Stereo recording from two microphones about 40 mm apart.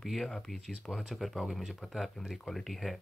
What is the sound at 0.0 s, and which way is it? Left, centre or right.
Speech, centre.